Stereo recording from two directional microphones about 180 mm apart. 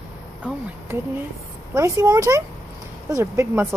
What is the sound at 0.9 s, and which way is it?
Speech, 15° right (ahead or behind).